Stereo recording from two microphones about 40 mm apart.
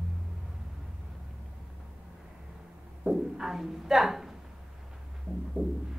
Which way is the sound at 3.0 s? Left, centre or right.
Centre.